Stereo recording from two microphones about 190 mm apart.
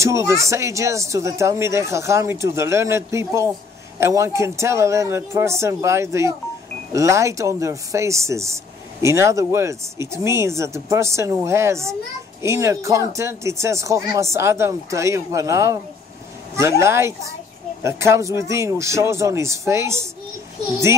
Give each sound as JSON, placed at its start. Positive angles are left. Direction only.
{"t": 0.0, "sound": "speech", "side_deg": -15}